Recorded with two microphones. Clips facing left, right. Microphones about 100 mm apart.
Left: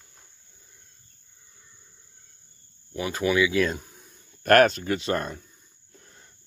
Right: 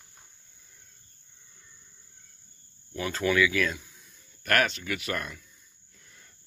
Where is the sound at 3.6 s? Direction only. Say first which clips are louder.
Left 4 dB; 40° left (ahead or behind).